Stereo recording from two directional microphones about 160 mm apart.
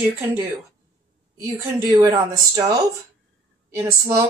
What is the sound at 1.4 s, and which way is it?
Speech, 20° right (ahead or behind).